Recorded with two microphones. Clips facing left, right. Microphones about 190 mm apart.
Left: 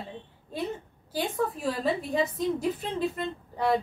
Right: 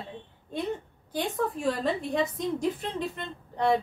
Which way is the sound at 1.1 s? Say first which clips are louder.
Even; 5° left (ahead or behind).